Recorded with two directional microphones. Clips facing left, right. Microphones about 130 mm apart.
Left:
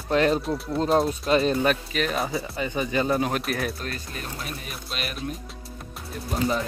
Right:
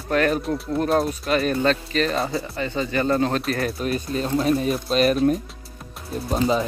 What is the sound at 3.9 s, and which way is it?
Speech, 25° right (ahead or behind).